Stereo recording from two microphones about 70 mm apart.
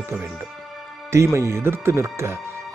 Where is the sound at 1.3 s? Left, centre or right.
Right.